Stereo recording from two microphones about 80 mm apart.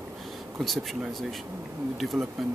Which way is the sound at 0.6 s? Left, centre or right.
Centre.